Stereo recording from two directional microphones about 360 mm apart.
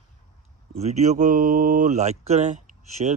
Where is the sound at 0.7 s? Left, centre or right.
Centre.